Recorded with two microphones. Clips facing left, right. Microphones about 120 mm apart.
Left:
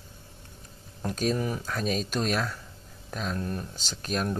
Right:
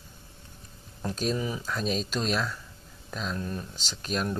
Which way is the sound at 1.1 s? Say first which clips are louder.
Left 2 dB; 50° left (ahead or behind).